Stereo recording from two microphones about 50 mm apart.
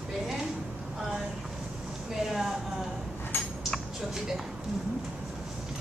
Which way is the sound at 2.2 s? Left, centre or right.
Centre.